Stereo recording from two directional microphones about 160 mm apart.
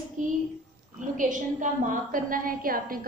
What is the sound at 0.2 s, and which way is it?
Speech, 55° right (ahead or behind).